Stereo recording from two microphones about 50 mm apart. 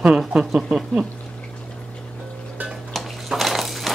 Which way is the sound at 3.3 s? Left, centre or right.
Centre.